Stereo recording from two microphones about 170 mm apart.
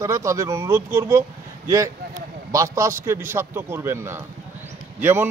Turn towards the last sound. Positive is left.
turn(degrees=-10)  # may be behind; listen again after turning